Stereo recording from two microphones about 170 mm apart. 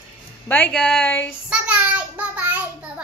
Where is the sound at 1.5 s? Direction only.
5° right (ahead or behind).